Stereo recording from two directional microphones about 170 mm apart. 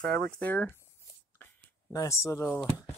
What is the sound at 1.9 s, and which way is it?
Speech, 15° left (ahead or behind).